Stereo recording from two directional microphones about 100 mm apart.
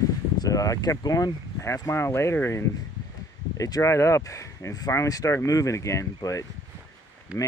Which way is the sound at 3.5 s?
35° left (ahead or behind).